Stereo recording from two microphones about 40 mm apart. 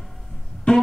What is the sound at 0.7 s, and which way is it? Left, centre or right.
Music, left.